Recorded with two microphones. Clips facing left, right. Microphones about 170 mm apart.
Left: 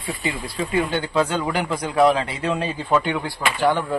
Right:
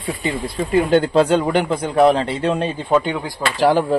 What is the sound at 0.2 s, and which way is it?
Speech, 50° right (ahead or behind).